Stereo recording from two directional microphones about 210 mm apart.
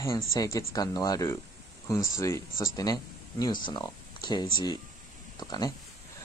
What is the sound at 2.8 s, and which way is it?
Speech, 20° left (ahead or behind).